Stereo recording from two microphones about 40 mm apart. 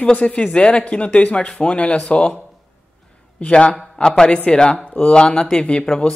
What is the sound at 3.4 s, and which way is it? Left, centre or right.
Speech, left.